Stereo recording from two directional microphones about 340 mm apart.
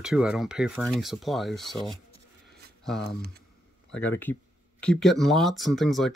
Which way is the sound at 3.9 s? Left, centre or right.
Centre.